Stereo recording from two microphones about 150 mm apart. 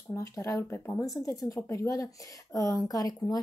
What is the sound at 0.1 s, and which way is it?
Speech, 20° left (ahead or behind).